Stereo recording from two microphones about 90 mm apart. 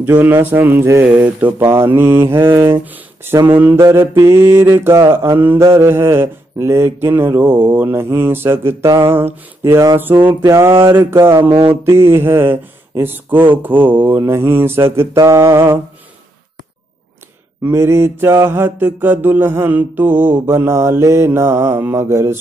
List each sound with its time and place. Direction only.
0.0 s mantra: 20° right (ahead or behind)
1.0 s mantra: 20° right (ahead or behind)
8.9 s a sound: 25° right (ahead or behind)
10.5 s mantra: 30° right (ahead or behind)
11.5 s a sound: 90° right
11.8 s mantra: 30° right (ahead or behind)
17.6 s mantra: 30° right (ahead or behind)